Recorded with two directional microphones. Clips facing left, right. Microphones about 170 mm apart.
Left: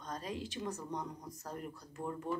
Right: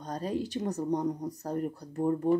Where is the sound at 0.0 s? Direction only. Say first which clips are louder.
Right 9 dB; 35° right (ahead or behind).